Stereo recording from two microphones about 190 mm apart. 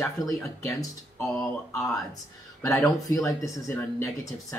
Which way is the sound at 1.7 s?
15° left (ahead or behind).